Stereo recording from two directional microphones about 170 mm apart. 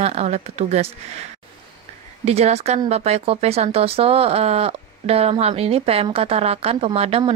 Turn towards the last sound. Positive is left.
turn(degrees=-35)  # may be behind; listen again after turning